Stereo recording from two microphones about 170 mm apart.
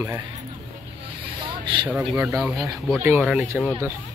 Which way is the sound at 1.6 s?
30° right (ahead or behind).